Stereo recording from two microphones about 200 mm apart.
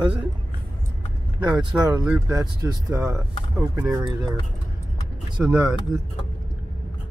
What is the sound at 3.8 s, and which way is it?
Speech, centre (ahead or behind).